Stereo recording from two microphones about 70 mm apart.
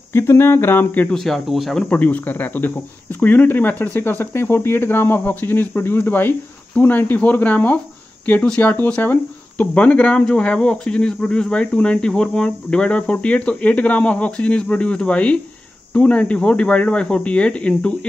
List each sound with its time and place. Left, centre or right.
0.1 s a sound: left
1.1 s speech: centre
1.9 s speech: left